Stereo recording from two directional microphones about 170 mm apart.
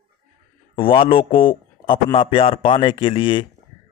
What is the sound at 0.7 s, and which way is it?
Speech, 30° left (ahead or behind).